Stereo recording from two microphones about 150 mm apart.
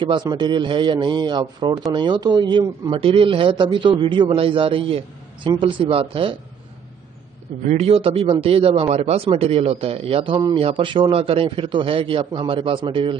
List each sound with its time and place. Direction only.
0.0 s a man's voice: 30° right (ahead or behind)
7.6 s a man's voice: 45° right (ahead or behind)